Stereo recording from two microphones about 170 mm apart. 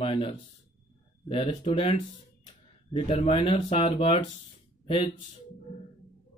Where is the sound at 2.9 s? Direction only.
35° left (ahead or behind).